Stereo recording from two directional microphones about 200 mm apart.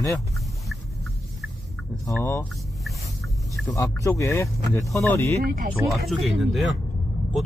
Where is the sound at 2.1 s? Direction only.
15° left (ahead or behind).